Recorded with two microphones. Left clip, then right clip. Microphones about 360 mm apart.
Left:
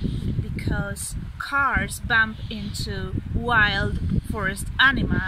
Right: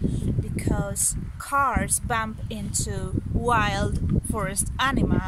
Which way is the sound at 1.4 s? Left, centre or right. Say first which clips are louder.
Left 1 dB; centre.